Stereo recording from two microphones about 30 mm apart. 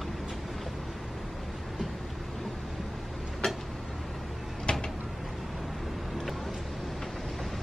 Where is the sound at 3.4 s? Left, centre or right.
Centre.